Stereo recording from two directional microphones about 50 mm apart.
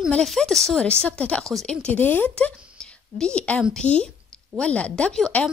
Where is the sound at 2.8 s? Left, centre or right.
Centre.